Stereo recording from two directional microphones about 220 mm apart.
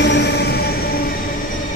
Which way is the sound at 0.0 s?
50° left (ahead or behind).